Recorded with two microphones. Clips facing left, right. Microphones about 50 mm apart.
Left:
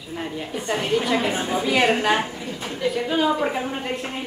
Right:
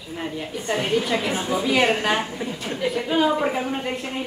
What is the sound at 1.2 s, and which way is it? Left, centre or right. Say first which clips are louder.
Speech: even; centre.